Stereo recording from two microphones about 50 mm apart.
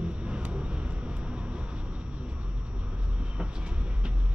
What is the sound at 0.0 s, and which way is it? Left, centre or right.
Vehicle, right.